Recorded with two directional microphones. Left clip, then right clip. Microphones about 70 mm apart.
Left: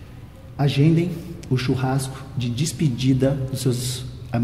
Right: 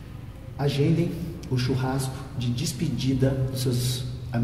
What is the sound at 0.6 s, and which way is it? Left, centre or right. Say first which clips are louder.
A man's voice: left 4 dB; left.